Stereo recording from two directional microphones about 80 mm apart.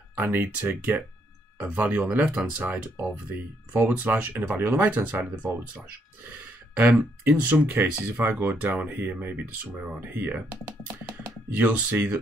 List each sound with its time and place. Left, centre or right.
0.2 s speech: right